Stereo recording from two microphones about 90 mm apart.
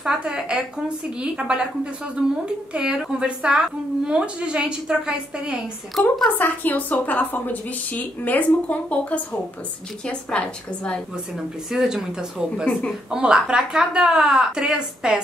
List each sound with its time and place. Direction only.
0.0 s a woman's voice: 10° right (ahead or behind)
5.9 s speech: centre (ahead or behind)
6.3 s a woman's voice: 20° left (ahead or behind)
11.7 s a woman's voice: 5° right (ahead or behind)